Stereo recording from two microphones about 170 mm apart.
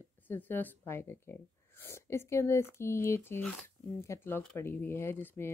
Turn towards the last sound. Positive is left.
turn(degrees=15)  # may be behind; listen again after turning